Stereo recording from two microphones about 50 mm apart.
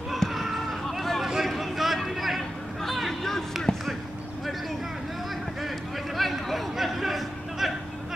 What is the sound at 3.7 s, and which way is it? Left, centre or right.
Basketball bounce, centre.